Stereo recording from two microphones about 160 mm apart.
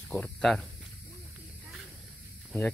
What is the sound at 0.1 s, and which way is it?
Speech, 5° left (ahead or behind).